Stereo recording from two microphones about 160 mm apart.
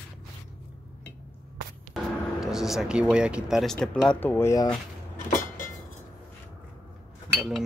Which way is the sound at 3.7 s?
5° left (ahead or behind).